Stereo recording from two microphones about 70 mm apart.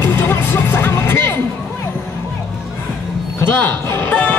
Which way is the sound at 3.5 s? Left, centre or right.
Left.